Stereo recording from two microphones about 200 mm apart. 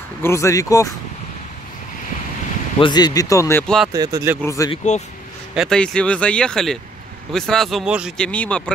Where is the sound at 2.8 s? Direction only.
20° left (ahead or behind).